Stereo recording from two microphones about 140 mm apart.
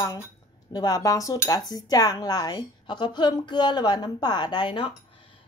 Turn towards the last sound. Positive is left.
turn(degrees=35)  # may be behind; listen again after turning